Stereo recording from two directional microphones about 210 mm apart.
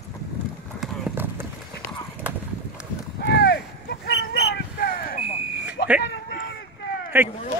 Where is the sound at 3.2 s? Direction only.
50° left (ahead or behind).